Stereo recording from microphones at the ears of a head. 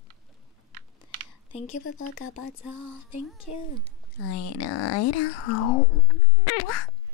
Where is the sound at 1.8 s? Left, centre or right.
Left.